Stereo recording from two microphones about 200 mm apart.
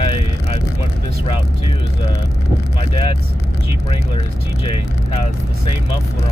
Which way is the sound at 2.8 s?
25° left (ahead or behind).